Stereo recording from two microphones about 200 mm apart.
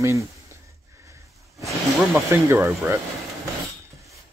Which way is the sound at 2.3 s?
15° right (ahead or behind).